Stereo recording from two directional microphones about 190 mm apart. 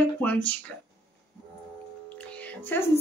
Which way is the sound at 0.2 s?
10° left (ahead or behind).